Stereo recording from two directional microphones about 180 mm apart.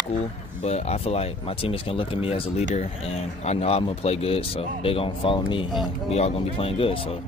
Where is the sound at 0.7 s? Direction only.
35° left (ahead or behind).